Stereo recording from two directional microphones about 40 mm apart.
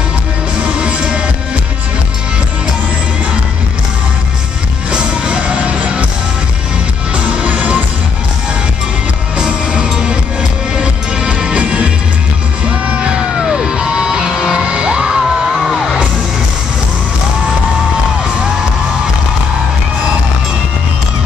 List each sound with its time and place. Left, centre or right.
0.7 s music: right
4.9 s music: right
7.2 s music: right
9.7 s music: right
12.6 s music: right
14.6 s music: right